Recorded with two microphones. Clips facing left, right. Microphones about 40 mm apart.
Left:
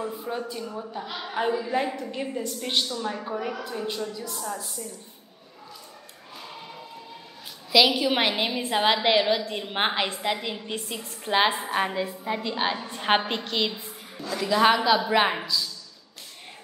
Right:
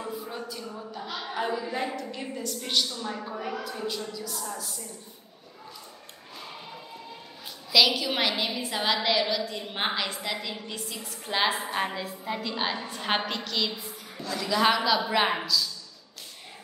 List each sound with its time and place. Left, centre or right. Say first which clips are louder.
0.6 s a woman's voice: left 4 dB; centre
3.8 s a woman's voice: left 2 dB; left
7.7 s a woman's voice: left 3 dB; left
11.3 s a woman's voice: left 4 dB; left
14.2 s a woman's voice: left 3 dB; centre